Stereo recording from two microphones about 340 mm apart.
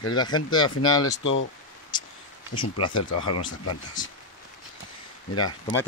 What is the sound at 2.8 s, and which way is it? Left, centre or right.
Speech, centre.